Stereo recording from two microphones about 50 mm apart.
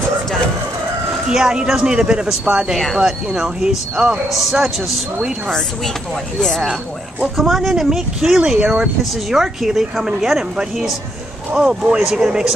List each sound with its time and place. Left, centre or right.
1.1 s speech: centre
2.7 s speech: centre
3.0 s speech: centre
4.3 s speech: centre
7.3 s speech: centre
8.4 s speech: centre
9.3 s speech: centre